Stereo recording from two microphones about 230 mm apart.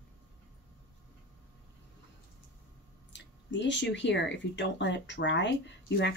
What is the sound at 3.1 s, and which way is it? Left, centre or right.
Speech, left.